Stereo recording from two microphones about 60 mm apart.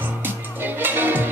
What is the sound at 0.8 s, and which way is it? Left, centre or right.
Music, right.